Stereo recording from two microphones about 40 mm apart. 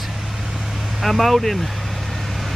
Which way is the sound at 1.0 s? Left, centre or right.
Centre.